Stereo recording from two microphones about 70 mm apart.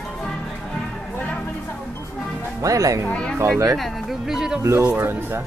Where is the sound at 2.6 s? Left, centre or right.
Right.